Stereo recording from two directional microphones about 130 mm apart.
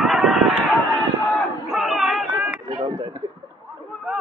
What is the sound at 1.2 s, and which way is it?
Crowd, centre (ahead or behind).